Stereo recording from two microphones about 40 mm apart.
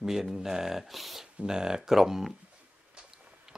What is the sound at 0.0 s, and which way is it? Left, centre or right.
Speech, centre.